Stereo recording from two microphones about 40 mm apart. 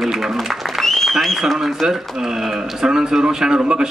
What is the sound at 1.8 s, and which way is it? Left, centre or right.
A man's voice, centre.